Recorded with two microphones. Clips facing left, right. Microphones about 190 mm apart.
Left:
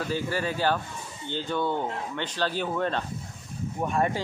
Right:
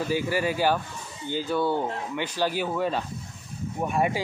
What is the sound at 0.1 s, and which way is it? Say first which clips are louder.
Speech: right 4 dB; 10° right (ahead or behind).